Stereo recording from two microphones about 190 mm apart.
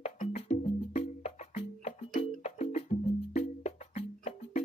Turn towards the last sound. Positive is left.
turn(degrees=35)  # may be behind; listen again after turning